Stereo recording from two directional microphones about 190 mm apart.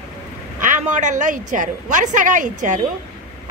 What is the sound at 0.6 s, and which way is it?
A woman's voice, 40° right (ahead or behind).